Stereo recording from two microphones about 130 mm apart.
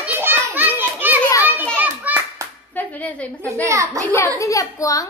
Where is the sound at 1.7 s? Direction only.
15° right (ahead or behind).